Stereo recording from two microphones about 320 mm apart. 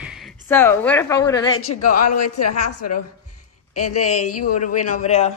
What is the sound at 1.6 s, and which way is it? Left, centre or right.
A woman's voice, left.